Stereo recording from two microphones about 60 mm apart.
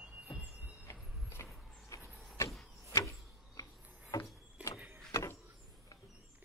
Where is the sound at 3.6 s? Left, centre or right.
Left.